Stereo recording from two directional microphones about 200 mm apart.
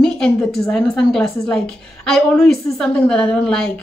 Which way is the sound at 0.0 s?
5° left (ahead or behind).